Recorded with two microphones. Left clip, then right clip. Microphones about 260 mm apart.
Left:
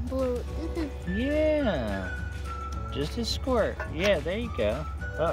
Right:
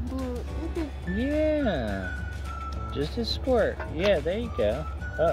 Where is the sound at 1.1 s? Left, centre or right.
Centre.